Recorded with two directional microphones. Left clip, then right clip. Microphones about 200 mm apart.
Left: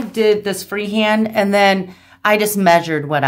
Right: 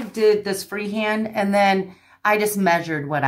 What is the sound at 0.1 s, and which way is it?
Speech, 30° left (ahead or behind).